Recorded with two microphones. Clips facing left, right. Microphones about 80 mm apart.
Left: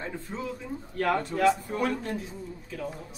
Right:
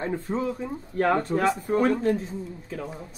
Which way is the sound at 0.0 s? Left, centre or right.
Right.